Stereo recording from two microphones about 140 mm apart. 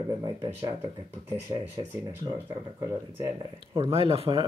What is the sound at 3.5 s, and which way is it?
Speech, 40° right (ahead or behind).